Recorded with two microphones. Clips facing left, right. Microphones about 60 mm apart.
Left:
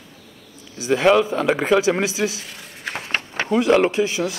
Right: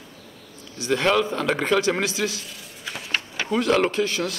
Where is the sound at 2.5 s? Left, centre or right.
Left.